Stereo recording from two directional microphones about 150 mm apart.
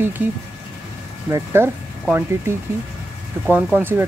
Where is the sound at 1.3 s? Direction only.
15° right (ahead or behind).